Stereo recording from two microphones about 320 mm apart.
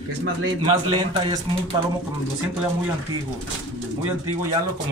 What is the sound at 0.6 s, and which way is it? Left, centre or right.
Speech, centre.